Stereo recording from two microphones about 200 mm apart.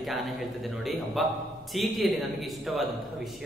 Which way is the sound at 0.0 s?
Centre (ahead or behind).